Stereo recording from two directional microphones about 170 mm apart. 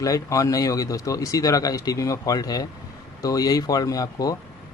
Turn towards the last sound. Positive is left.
turn(degrees=20)  # may be behind; listen again after turning